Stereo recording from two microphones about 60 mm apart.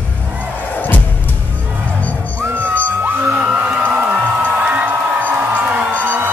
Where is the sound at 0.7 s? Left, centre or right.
Left.